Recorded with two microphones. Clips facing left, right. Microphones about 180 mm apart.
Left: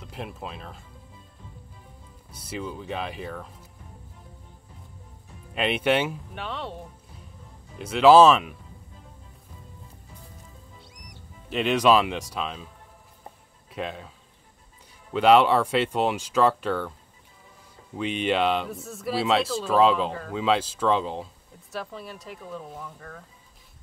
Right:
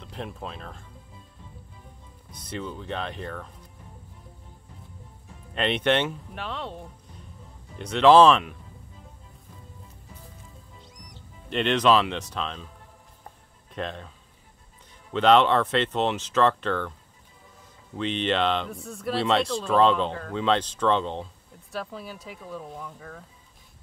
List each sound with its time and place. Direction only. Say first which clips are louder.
0.0 s speech: even; 5° left (ahead or behind)
2.3 s speech: left 1 dB; 10° left (ahead or behind)
5.5 s speech: even; 5° left (ahead or behind)
10.9 s speech: even; 5° left (ahead or behind)
13.7 s speech: even; 5° left (ahead or behind)
15.1 s speech: left 1 dB; 10° left (ahead or behind)
17.9 s speech: left 1 dB; 10° left (ahead or behind)